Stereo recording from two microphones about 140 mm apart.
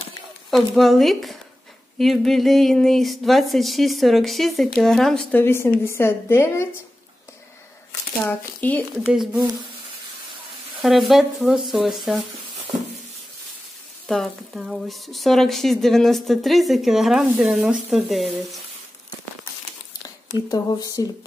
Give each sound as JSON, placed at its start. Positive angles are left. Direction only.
{"t": 0.5, "sound": "speech", "side_deg": 0}
{"t": 5.4, "sound": "a woman's voice", "side_deg": 15}
{"t": 8.3, "sound": "a woman's voice", "side_deg": 10}
{"t": 9.0, "sound": "speech", "side_deg": -5}
{"t": 10.8, "sound": "speech", "side_deg": 0}
{"t": 14.0, "sound": "speech", "side_deg": 0}
{"t": 20.4, "sound": "speech", "side_deg": 25}